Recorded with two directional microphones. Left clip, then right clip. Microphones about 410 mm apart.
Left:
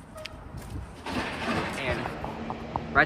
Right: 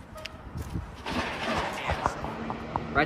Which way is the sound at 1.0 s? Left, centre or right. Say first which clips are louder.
Even; right.